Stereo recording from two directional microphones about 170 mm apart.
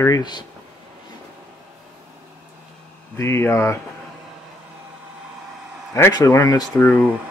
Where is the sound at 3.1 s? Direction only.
15° left (ahead or behind).